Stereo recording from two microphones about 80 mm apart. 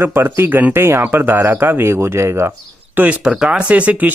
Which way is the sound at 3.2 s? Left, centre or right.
Centre.